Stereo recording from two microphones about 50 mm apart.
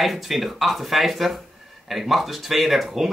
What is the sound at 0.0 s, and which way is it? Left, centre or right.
Speech, centre.